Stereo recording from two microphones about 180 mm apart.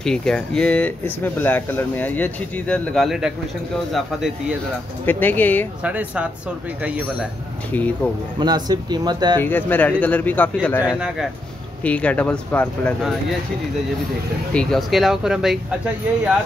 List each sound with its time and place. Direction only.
0.0 s speech: 5° left (ahead or behind)
5.0 s speech: 10° left (ahead or behind)
5.9 s speech: 5° right (ahead or behind)
7.7 s speech: 10° left (ahead or behind)
8.4 s speech: 20° right (ahead or behind)
9.4 s speech: 10° left (ahead or behind)
11.8 s speech: 5° left (ahead or behind)
14.5 s speech: 5° left (ahead or behind)